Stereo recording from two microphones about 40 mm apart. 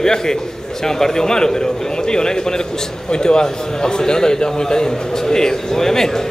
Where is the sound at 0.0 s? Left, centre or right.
Centre.